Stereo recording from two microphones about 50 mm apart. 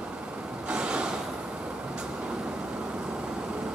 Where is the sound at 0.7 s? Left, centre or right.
Centre.